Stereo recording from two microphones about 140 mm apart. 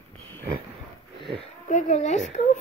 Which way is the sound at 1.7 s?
55° left (ahead or behind).